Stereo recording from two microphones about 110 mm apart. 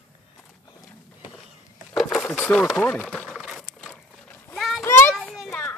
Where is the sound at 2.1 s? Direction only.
10° left (ahead or behind).